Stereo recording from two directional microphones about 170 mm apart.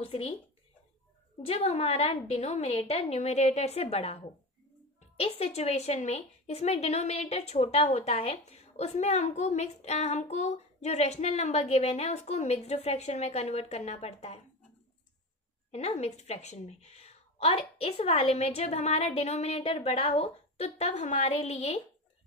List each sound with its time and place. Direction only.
0.0 s speech: 35° left (ahead or behind)
1.4 s speech: 35° left (ahead or behind)
15.7 s speech: 40° left (ahead or behind)